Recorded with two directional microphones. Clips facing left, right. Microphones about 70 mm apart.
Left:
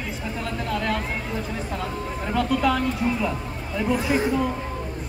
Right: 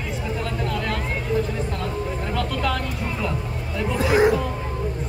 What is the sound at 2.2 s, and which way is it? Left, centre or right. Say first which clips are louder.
Speech: left 5 dB; centre.